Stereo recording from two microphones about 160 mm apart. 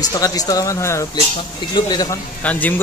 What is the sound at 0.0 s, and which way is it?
A man's voice, 25° left (ahead or behind).